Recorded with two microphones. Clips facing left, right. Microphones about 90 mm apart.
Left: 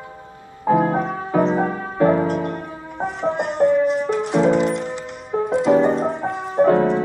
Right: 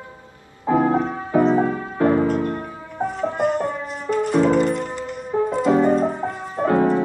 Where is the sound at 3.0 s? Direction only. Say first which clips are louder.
Right 1 dB; 90° left.